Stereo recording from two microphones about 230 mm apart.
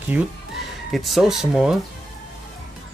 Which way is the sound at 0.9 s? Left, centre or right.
Centre.